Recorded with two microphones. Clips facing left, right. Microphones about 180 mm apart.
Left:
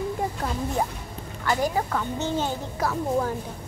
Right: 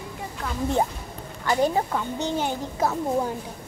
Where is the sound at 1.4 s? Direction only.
25° right (ahead or behind).